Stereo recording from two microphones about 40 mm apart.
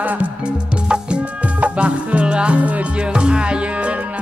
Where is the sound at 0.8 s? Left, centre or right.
Right.